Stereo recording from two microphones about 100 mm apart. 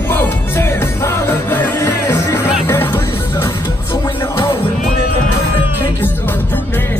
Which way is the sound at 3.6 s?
50° left (ahead or behind).